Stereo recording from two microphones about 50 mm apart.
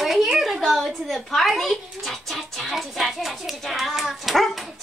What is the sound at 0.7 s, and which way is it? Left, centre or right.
A child's voice, centre.